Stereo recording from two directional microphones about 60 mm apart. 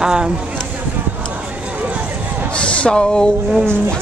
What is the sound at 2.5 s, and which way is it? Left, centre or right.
Speech, centre.